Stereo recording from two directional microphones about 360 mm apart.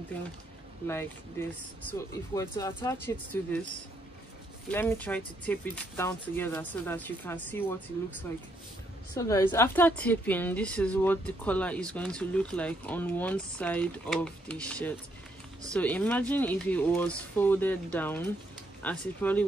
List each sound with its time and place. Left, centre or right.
1.9 s speech: centre
4.6 s a woman's voice: centre
9.1 s a woman's voice: centre